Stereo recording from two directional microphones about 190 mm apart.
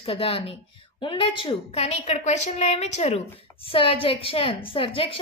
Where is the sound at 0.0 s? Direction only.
30° left (ahead or behind).